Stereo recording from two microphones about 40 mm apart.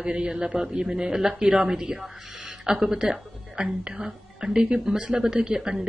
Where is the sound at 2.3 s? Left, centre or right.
Right.